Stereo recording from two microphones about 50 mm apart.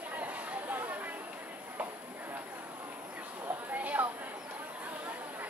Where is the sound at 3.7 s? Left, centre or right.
Right.